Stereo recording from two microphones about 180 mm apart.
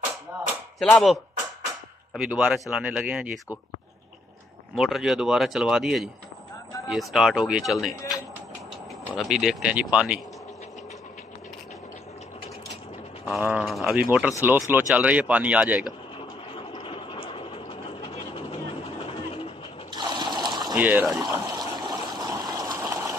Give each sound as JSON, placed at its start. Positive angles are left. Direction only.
{"t": 0.7, "sound": "speech", "side_deg": 0}
{"t": 4.7, "sound": "speech", "side_deg": 0}
{"t": 9.2, "sound": "speech", "side_deg": 0}
{"t": 13.3, "sound": "speech", "side_deg": -5}
{"t": 16.5, "sound": "vehicle", "side_deg": 30}
{"t": 19.9, "sound": "a sound", "side_deg": -25}
{"t": 20.7, "sound": "speech", "side_deg": -10}
{"t": 21.5, "sound": "stream", "side_deg": -20}